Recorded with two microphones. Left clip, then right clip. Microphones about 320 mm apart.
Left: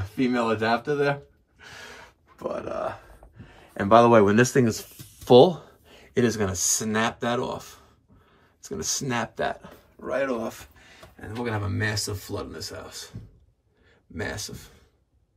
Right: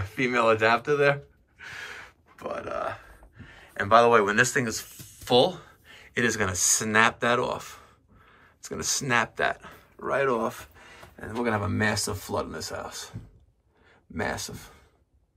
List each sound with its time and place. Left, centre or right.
0.1 s speech: centre
1.6 s gasp: centre
2.9 s speech: centre
4.8 s a sound: centre
5.9 s a sound: centre
6.6 s speech: centre
7.7 s a sound: centre
9.9 s speech: centre
14.1 s speech: centre